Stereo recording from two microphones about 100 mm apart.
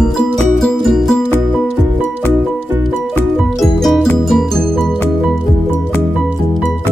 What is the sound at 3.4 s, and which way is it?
Music, centre (ahead or behind).